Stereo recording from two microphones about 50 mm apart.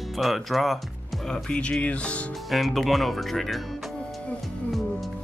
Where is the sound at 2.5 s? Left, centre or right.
Centre.